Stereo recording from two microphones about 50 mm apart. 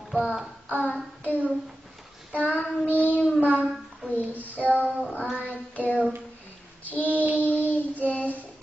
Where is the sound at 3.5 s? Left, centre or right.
Right.